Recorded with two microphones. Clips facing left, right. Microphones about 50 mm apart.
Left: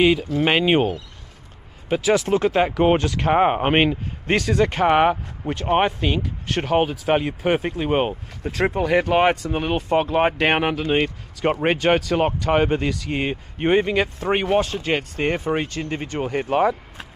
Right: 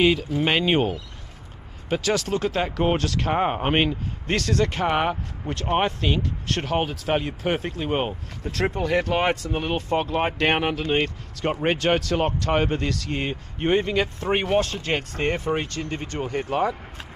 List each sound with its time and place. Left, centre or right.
0.0 s speech: centre
1.9 s speech: centre
2.2 s speech: left